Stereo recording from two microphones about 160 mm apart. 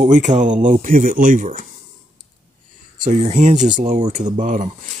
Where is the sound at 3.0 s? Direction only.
50° right (ahead or behind).